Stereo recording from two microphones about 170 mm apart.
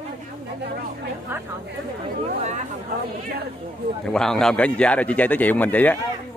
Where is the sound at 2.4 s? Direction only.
45° right (ahead or behind).